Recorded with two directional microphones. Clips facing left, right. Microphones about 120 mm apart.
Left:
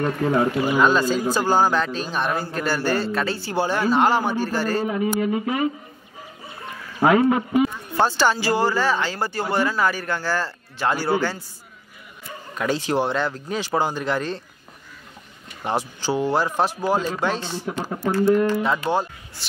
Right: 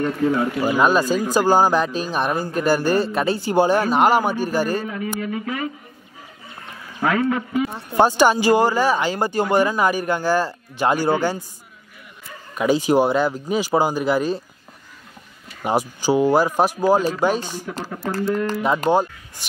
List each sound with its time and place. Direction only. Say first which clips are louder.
0.0 s speech: right 1 dB; 35° left (ahead or behind)
0.7 s speech: right 2 dB; 10° right (ahead or behind)
4.8 s speech: left 4 dB; 25° left (ahead or behind)
7.1 s speech: left 3 dB; 20° left (ahead or behind)
7.9 s speech: right 7 dB; 15° right (ahead or behind)
12.5 s speech: right 5 dB; 15° right (ahead or behind)
15.6 s speech: right 4 dB; 10° right (ahead or behind)